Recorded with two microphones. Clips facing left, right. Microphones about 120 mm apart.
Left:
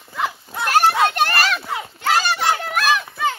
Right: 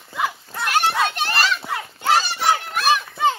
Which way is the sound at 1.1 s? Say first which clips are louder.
Left 3 dB; 55° left (ahead or behind).